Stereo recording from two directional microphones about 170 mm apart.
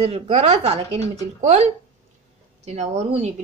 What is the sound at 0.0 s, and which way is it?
A woman's voice, 40° right (ahead or behind).